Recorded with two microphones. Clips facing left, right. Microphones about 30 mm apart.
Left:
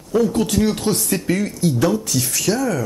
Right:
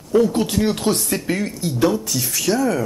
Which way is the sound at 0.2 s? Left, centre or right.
Right.